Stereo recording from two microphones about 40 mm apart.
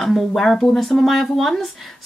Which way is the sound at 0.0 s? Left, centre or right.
Centre.